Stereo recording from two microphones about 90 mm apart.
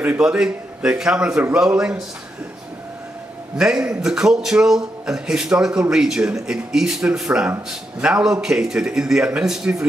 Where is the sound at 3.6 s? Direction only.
10° right (ahead or behind).